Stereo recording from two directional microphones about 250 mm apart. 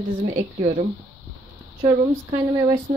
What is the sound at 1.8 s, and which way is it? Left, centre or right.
Speech, centre.